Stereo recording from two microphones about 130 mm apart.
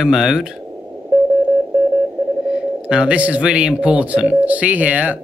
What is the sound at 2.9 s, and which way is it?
Speech, 10° right (ahead or behind).